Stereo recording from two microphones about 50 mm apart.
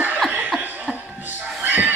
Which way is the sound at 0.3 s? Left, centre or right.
Right.